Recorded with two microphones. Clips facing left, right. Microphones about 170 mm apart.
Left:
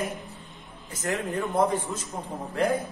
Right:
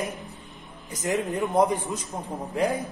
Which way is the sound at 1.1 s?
15° right (ahead or behind).